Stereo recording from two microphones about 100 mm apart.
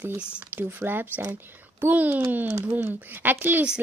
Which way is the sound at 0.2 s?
10° right (ahead or behind).